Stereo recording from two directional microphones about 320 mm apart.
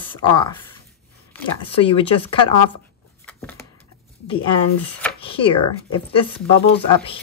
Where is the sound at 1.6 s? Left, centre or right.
Centre.